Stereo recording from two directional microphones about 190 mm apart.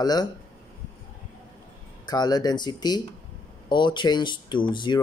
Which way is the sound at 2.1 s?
20° left (ahead or behind).